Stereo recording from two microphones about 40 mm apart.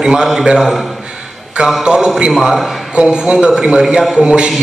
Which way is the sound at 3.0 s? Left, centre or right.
Right.